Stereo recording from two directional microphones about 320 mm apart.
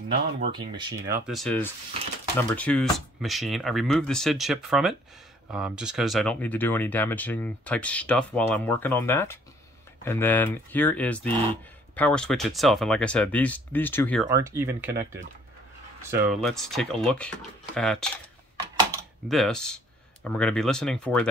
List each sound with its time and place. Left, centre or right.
0.1 s speech: right
0.5 s speech: centre
14.3 s speech: centre
16.0 s speech: centre
19.2 s speech: centre